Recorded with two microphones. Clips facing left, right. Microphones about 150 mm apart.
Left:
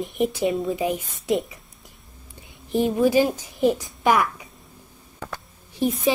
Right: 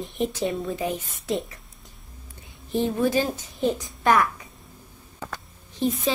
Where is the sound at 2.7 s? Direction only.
15° left (ahead or behind).